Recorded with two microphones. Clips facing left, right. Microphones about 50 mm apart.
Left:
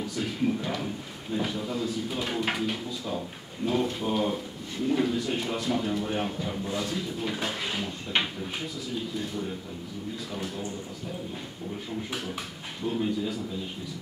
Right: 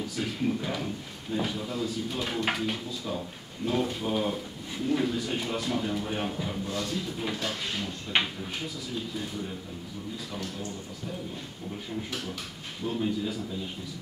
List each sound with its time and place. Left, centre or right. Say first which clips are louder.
0.0 s a sound: left 1 dB; centre
1.3 s speech: left 1 dB; centre
10.3 s speech: left 2 dB; centre
12.8 s speech: left 1 dB; centre